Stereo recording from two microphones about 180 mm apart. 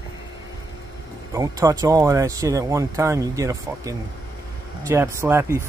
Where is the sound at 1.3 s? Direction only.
20° right (ahead or behind).